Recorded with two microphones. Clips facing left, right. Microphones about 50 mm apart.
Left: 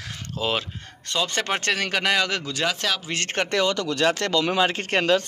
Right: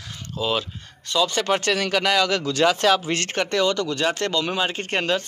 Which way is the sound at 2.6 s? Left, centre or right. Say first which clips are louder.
Right 7 dB; centre.